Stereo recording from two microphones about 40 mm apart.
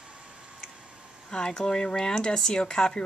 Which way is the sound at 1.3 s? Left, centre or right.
Centre.